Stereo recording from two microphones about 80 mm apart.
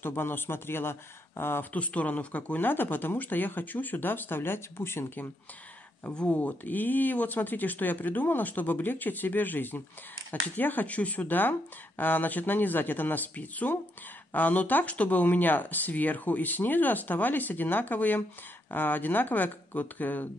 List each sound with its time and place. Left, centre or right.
0.0 s speech: left
6.1 s speech: centre